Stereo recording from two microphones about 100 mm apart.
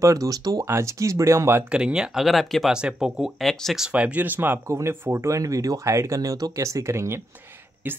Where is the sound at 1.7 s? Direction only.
10° right (ahead or behind).